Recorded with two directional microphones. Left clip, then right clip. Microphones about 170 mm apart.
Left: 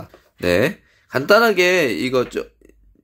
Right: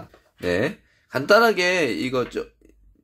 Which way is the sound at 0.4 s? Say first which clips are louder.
Left 6 dB; 30° left (ahead or behind).